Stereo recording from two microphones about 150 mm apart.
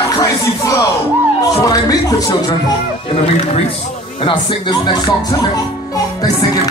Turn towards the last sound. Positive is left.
turn(degrees=30)  # may be behind; listen again after turning